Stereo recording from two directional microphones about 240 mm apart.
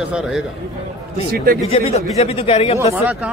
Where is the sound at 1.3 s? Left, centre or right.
Right.